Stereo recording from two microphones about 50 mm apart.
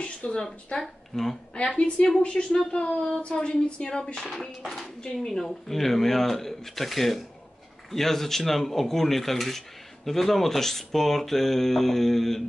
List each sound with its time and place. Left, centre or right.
0.0 s a sound: left
0.7 s speech: centre
1.5 s a woman's voice: left
4.3 s speech: centre
4.6 s speech: centre